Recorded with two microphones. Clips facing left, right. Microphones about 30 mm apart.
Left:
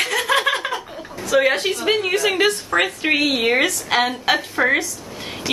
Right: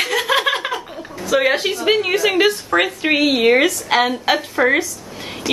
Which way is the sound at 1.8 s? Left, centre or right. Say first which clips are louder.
Right 3 dB; centre.